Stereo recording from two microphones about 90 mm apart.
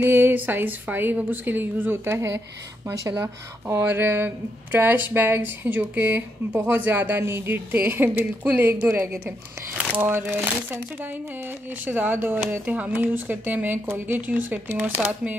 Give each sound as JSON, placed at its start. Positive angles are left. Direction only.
{"t": 0.0, "sound": "speech", "side_deg": -25}
{"t": 11.8, "sound": "speech", "side_deg": -20}